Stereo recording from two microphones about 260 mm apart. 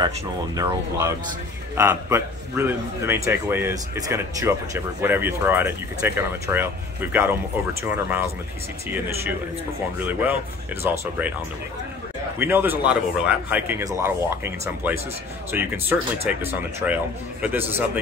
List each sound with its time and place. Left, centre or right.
0.6 s speech: centre
10.8 s speech: centre
12.4 s speech: centre